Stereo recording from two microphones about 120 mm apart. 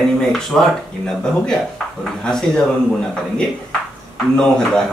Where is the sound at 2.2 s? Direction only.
5° left (ahead or behind).